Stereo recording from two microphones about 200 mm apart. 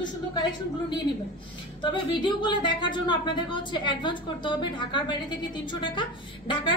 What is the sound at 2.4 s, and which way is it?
A woman's voice, 25° left (ahead or behind).